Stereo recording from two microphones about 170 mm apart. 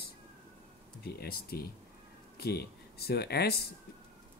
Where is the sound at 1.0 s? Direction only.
65° left (ahead or behind).